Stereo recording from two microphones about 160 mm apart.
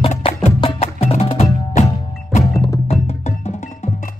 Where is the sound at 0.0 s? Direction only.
40° left (ahead or behind).